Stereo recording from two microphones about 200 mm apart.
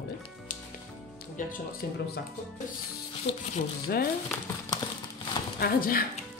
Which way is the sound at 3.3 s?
25° left (ahead or behind).